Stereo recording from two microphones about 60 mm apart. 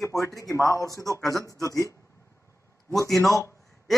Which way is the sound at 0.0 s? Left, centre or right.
Left.